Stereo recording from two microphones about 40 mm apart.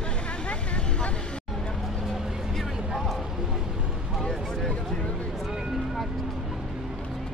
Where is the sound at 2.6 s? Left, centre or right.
Centre.